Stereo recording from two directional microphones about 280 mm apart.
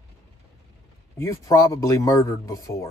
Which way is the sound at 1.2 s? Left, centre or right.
Centre.